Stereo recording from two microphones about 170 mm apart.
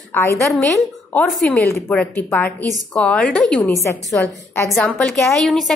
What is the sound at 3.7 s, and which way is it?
A woman's voice, 15° left (ahead or behind).